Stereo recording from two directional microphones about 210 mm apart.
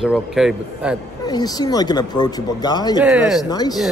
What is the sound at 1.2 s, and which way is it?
Speech, 20° left (ahead or behind).